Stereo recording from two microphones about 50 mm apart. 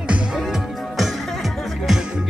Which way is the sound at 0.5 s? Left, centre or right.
Centre.